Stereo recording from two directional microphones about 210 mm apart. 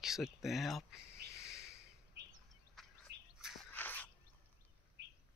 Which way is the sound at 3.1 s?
55° right (ahead or behind).